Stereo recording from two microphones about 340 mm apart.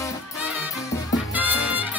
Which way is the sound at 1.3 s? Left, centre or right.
Centre.